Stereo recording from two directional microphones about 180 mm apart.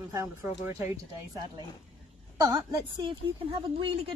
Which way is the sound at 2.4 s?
20° right (ahead or behind).